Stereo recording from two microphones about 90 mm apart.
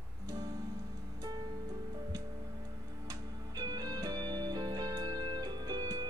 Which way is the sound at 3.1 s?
50° right (ahead or behind).